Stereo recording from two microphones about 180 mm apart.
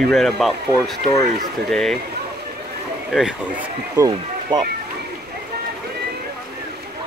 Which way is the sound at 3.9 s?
20° right (ahead or behind).